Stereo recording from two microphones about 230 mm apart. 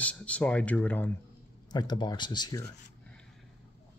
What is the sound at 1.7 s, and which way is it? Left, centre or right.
Speech, centre.